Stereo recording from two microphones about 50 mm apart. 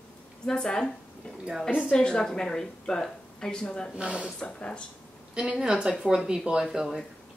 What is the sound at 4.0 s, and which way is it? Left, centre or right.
Speech, right.